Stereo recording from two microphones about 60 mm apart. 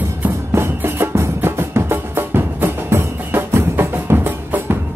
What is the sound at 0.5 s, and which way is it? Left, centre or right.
Music, right.